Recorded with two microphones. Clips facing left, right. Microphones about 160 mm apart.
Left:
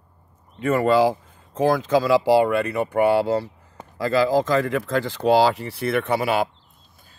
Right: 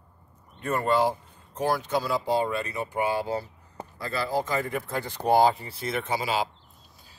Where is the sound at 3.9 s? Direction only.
90° left; by 6.4 s 60° left (ahead or behind).